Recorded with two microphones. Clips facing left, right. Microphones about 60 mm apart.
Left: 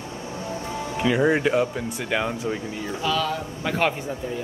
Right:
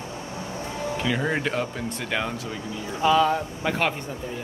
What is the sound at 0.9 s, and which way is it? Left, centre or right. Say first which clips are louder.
Speech: left 6 dB; centre.